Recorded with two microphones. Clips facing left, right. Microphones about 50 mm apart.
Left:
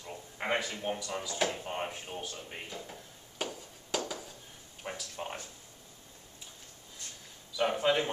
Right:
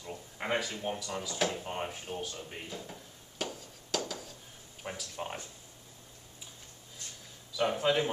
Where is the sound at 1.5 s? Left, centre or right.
Centre.